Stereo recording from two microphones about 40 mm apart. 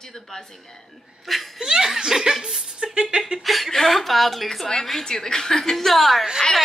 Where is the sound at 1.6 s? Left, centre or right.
Centre.